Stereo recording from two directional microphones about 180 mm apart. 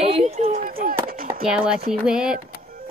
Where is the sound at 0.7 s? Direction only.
55° right (ahead or behind).